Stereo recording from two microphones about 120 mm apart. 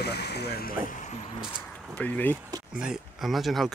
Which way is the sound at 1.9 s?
15° left (ahead or behind).